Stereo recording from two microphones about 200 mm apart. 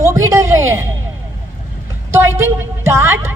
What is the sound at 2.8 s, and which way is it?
Speech, 15° right (ahead or behind).